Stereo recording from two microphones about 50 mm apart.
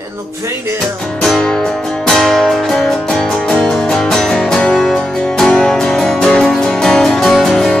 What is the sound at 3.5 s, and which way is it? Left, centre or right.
Music, centre.